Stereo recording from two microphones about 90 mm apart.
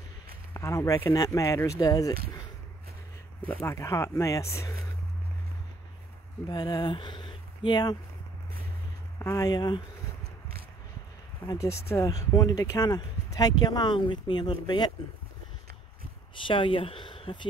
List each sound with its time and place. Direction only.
0.5 s speech: 30° left (ahead or behind)
3.7 s speech: 35° left (ahead or behind)
6.4 s speech: 50° left (ahead or behind)
9.2 s speech: 35° left (ahead or behind)
9.5 s speech: 55° left (ahead or behind)
11.4 s speech: 35° left (ahead or behind); by 14.9 s 55° left (ahead or behind)
16.4 s speech: 70° left (ahead or behind)